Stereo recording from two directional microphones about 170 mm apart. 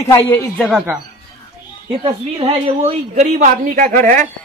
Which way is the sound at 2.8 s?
40° right (ahead or behind).